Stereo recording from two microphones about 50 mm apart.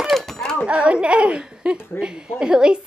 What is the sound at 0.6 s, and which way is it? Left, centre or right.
A child's voice, right.